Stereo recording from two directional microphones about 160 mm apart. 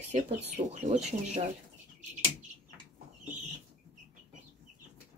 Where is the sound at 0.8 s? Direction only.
45° right (ahead or behind).